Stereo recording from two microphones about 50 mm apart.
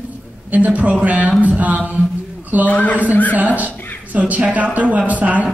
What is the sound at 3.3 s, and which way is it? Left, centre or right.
Speech, right.